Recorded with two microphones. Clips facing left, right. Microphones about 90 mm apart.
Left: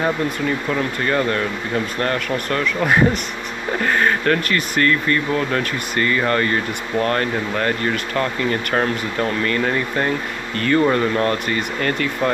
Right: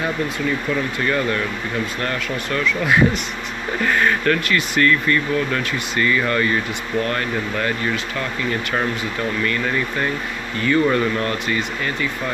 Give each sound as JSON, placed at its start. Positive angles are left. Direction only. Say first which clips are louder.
{"t": 1.0, "sound": "speech", "louder": "left 2 dB", "side_deg": 40}
{"t": 9.4, "sound": "speech", "louder": "left 2 dB", "side_deg": 40}
{"t": 10.5, "sound": "speech", "louder": "left 1 dB", "side_deg": 55}
{"t": 10.9, "sound": "speech", "louder": "left 2 dB", "side_deg": 35}